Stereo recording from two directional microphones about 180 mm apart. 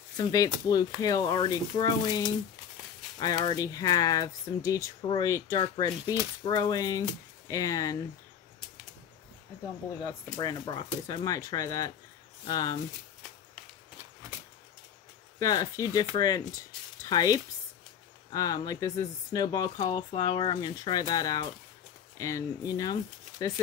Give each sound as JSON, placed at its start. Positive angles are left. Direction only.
{"t": 0.2, "sound": "speech", "side_deg": 20}
{"t": 10.3, "sound": "speech", "side_deg": 25}
{"t": 15.3, "sound": "speech", "side_deg": 20}